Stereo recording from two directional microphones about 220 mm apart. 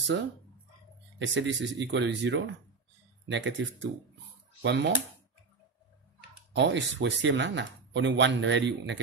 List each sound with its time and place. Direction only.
1.2 s speech: 55° right (ahead or behind)
6.5 s speech: 55° right (ahead or behind)